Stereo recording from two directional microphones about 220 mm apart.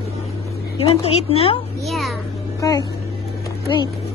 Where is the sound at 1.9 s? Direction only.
Centre (ahead or behind).